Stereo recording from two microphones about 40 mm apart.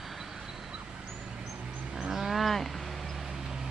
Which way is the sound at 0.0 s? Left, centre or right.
Centre.